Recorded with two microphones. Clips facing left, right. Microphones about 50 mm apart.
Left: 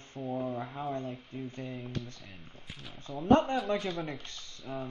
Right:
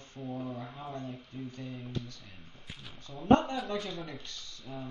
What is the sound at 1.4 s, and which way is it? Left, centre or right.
Speech, left.